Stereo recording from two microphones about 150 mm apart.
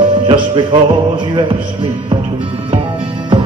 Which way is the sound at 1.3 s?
30° right (ahead or behind).